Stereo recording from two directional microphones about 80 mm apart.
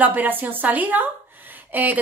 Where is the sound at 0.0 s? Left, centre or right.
Right.